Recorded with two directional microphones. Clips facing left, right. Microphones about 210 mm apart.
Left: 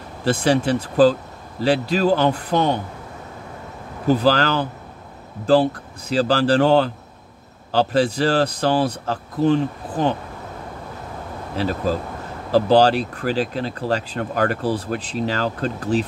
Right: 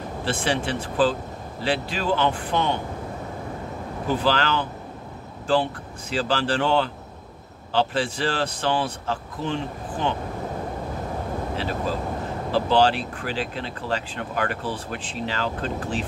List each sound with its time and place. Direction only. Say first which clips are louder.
0.2 s speech: left 7 dB; 40° left (ahead or behind)
4.1 s speech: left 6 dB; 40° left (ahead or behind)
12.4 s speech: left 5 dB; 40° left (ahead or behind)